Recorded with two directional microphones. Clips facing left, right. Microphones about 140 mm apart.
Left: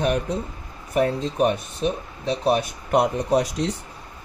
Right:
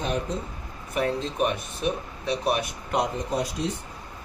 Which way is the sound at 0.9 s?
40° left (ahead or behind).